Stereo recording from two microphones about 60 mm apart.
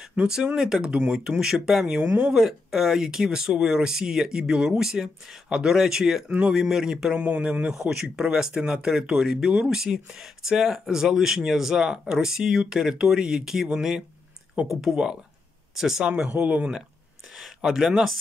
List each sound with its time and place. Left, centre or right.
0.6 s speech: centre
2.0 s speech: right
2.3 s speech: centre
6.2 s speech: right
6.5 s speech: centre; by 7.7 s right
7.7 s speech: centre
16.3 s speech: right
17.4 s speech: centre